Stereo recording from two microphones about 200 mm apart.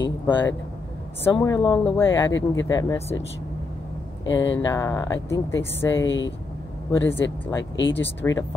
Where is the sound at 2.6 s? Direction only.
15° left (ahead or behind).